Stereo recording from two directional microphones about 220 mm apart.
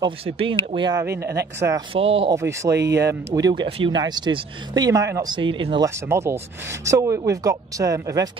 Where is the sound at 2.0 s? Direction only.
25° right (ahead or behind).